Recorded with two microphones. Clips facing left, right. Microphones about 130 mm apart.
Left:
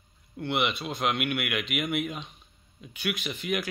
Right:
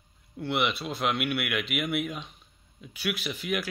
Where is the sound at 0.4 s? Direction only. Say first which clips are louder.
Even; centre (ahead or behind).